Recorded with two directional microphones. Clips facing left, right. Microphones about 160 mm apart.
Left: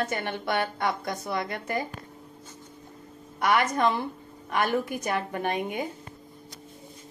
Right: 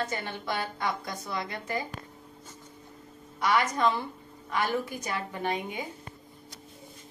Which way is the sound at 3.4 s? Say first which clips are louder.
Left 2 dB; 55° left (ahead or behind).